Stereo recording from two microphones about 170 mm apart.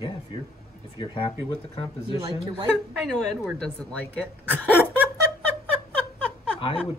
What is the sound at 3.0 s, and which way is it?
Speech, 5° left (ahead or behind).